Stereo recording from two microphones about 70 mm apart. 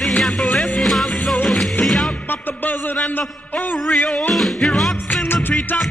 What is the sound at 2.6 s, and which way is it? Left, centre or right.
Music, left.